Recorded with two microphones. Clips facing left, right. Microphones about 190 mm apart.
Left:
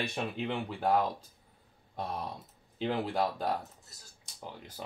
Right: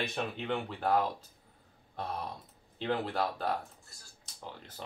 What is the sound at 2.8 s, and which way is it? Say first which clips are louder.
Speech: left 1 dB; 15° left (ahead or behind).